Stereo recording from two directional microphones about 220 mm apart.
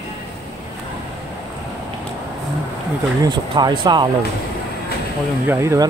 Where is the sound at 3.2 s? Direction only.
20° right (ahead or behind).